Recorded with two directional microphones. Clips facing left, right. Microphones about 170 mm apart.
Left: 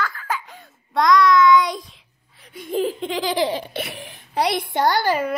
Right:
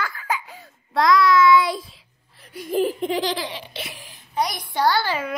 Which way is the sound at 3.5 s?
50° left (ahead or behind).